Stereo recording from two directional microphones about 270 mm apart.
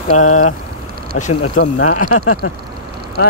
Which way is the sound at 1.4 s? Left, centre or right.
Left.